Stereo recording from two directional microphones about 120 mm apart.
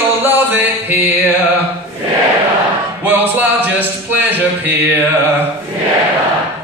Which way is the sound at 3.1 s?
15° right (ahead or behind).